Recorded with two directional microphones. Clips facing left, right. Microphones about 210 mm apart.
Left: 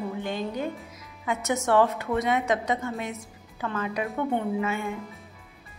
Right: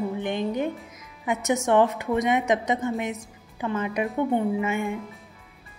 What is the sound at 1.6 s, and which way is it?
A woman's voice, 15° right (ahead or behind).